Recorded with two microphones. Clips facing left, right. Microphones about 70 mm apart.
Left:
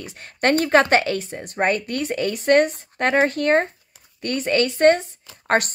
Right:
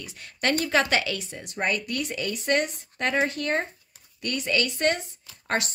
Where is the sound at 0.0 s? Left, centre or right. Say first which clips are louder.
Left 7 dB; left.